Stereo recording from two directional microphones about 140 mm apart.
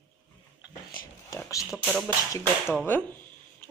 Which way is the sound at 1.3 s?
20° left (ahead or behind).